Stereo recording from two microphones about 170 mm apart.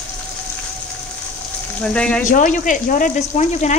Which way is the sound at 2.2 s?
50° left (ahead or behind).